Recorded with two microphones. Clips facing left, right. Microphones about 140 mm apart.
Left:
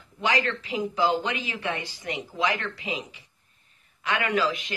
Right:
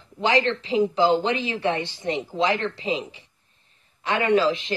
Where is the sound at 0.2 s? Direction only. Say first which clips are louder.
Right 5 dB; 30° right (ahead or behind).